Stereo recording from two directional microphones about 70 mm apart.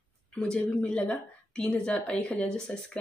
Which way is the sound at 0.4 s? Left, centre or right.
Centre.